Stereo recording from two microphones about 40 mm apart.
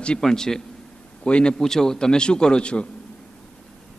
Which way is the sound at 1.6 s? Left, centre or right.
Centre.